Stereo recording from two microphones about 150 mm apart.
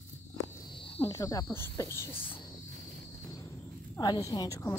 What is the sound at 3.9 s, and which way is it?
Speech, 25° left (ahead or behind).